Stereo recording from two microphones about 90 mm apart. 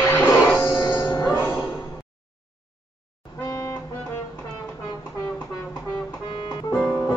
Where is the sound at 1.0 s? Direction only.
45° left (ahead or behind).